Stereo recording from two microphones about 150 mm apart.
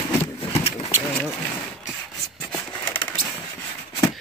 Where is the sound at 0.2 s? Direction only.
40° left (ahead or behind).